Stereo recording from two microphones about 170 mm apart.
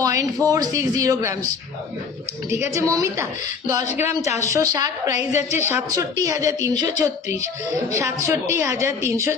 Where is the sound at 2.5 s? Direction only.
15° right (ahead or behind).